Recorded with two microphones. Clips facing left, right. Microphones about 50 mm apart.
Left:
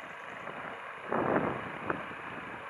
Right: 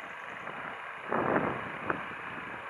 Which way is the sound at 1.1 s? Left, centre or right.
Centre.